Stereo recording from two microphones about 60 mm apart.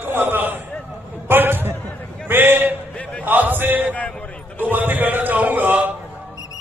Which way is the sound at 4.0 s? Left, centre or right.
Left.